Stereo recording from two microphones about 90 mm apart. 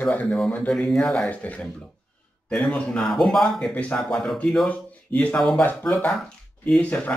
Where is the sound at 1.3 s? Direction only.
15° left (ahead or behind).